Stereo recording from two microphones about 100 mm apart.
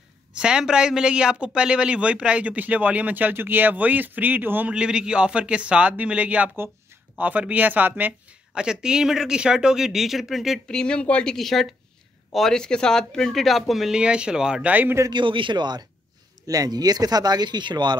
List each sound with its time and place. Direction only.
0.3 s a man's voice: 10° right (ahead or behind)
4.7 s a man's voice: 10° right (ahead or behind)
15.0 s speech: 55° right (ahead or behind)